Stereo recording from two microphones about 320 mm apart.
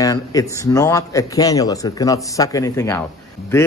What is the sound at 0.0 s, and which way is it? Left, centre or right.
A man's voice, centre.